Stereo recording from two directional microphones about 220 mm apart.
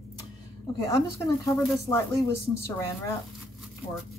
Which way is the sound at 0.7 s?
15° left (ahead or behind).